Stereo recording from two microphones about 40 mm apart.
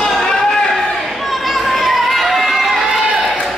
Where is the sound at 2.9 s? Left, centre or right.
Centre.